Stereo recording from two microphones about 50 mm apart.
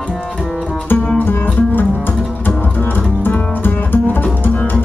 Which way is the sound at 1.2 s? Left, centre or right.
Left.